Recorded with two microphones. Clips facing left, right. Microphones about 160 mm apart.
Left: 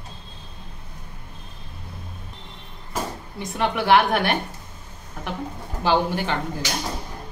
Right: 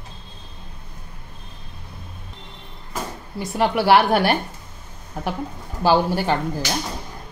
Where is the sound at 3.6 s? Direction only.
35° right (ahead or behind).